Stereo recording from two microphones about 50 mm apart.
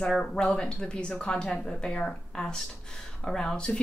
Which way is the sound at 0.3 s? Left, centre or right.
Centre.